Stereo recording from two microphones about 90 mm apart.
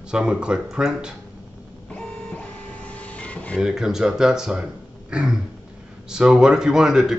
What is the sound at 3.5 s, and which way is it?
Speech, 5° right (ahead or behind).